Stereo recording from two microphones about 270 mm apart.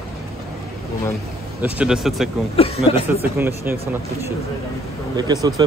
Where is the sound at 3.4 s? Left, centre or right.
Centre.